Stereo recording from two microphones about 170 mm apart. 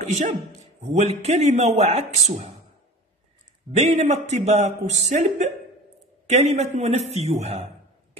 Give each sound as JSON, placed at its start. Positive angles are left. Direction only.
{"t": 0.0, "sound": "a man's voice", "side_deg": -45}
{"t": 3.7, "sound": "a man's voice", "side_deg": -40}